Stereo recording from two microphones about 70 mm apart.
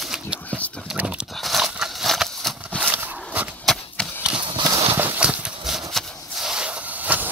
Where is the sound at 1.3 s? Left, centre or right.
Centre.